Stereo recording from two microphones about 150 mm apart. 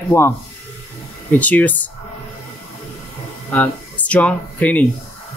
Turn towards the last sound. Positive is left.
turn(degrees=10)  # may be behind; listen again after turning